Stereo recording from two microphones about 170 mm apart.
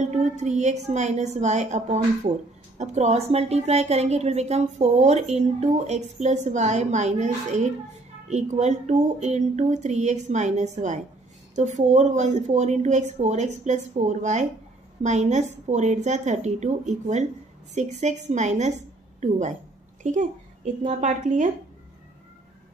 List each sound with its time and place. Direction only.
0.0 s a woman's voice: 45° right (ahead or behind)